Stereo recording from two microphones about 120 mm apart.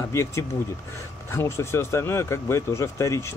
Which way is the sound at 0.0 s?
25° left (ahead or behind).